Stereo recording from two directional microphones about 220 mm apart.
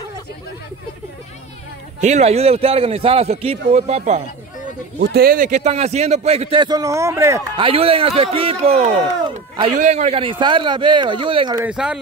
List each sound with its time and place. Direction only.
2.0 s a man's voice: 30° right (ahead or behind)
5.0 s a man's voice: 45° right (ahead or behind); by 11.6 s 20° right (ahead or behind)
11.6 s speech: 5° right (ahead or behind)